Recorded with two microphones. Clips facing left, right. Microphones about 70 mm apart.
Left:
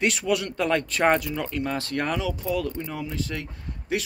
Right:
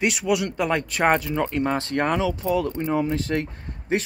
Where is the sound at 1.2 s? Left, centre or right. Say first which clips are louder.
Right 5 dB; right.